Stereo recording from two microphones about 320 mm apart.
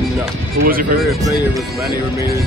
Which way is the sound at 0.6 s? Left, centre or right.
Right.